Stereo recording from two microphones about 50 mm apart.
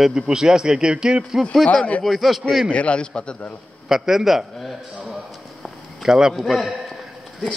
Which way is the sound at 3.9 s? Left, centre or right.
Centre.